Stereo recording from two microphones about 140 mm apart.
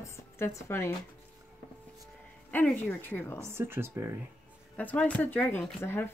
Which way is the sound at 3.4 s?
20° right (ahead or behind).